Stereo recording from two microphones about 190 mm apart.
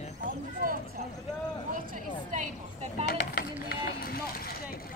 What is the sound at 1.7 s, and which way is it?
Speech, 45° right (ahead or behind).